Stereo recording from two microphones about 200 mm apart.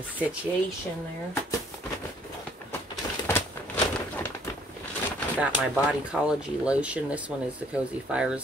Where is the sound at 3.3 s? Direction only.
10° left (ahead or behind).